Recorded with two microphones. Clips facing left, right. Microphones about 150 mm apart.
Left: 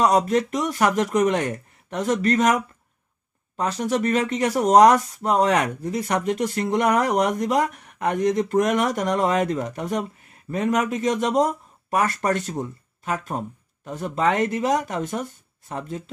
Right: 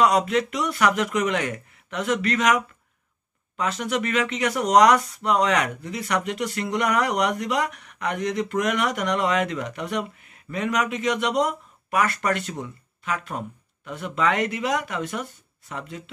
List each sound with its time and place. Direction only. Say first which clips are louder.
0.0 s speech: left 1 dB; 45° left (ahead or behind)
3.5 s speech: left 2 dB; 45° left (ahead or behind)